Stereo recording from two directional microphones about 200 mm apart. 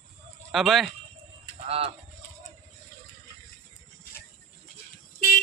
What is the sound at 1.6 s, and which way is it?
Fowl, 30° right (ahead or behind).